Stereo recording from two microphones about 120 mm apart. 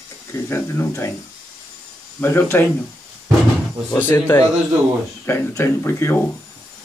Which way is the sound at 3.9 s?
20° left (ahead or behind).